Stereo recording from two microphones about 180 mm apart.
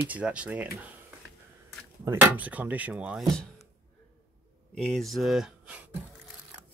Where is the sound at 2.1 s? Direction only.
10° right (ahead or behind).